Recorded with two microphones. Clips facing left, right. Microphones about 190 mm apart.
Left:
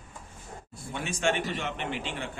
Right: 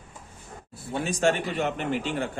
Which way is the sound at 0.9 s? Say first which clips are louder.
Right 5 dB; 35° right (ahead or behind).